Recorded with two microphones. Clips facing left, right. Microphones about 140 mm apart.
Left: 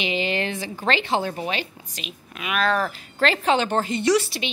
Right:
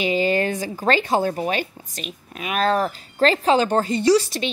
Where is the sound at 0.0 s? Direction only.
40° right (ahead or behind).